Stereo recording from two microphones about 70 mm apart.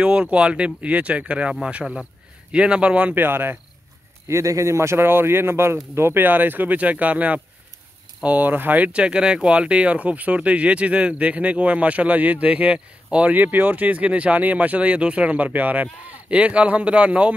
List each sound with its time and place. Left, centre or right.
0.0 s speech: centre; by 3.5 s right
4.3 s a man's voice: right; by 17.3 s centre